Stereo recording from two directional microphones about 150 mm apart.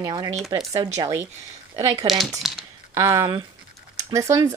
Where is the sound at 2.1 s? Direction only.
Centre (ahead or behind).